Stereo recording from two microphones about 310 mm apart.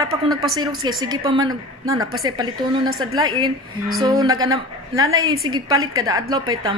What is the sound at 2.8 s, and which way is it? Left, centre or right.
Speech, right.